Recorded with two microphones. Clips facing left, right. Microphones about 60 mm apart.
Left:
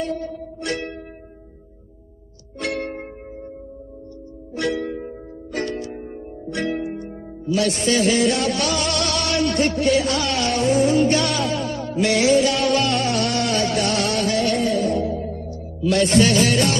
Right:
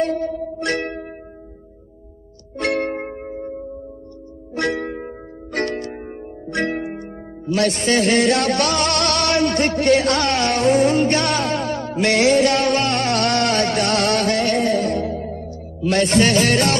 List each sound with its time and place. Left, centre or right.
0.0 s music: right
3.0 s music: right
4.6 s music: right